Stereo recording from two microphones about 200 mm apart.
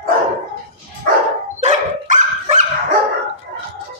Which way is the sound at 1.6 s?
35° right (ahead or behind).